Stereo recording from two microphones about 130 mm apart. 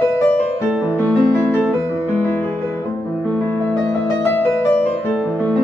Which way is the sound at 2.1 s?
15° left (ahead or behind).